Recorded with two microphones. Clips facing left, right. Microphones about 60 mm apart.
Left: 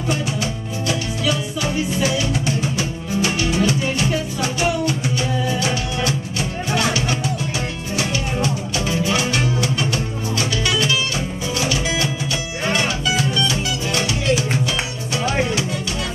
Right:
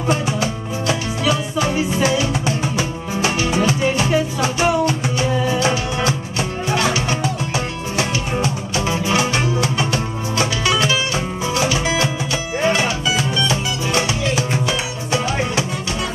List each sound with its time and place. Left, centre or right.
0.1 s music: right
8.0 s music: right